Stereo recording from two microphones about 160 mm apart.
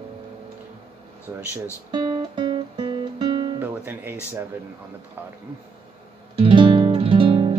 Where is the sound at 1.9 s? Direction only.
25° right (ahead or behind).